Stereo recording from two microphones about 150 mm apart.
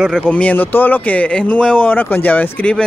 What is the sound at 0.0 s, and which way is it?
Speech, 5° left (ahead or behind).